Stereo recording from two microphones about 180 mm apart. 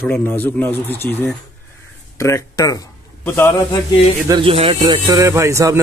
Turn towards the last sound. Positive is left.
turn(degrees=-15)  # may be behind; listen again after turning